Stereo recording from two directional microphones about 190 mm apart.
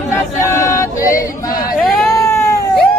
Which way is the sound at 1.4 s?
20° left (ahead or behind).